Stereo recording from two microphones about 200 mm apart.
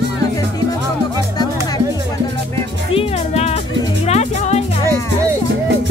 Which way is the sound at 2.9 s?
30° left (ahead or behind).